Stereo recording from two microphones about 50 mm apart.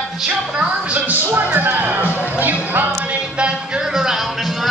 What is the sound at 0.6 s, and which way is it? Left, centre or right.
Music, right.